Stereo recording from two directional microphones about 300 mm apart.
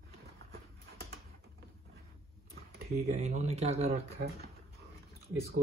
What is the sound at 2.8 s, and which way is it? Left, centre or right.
Speech, right.